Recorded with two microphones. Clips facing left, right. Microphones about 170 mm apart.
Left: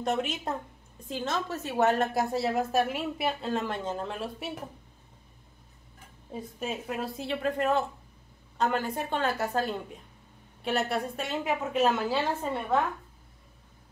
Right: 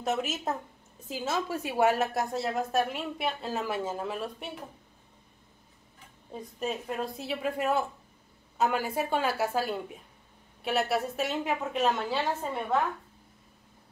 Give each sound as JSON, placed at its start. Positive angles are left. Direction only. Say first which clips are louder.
{"t": 0.0, "sound": "a woman's voice", "louder": "left 1 dB", "side_deg": -5}
{"t": 2.1, "sound": "a woman's voice", "louder": "left 3 dB", "side_deg": 0}
{"t": 6.3, "sound": "a woman's voice", "louder": "right 1 dB", "side_deg": 0}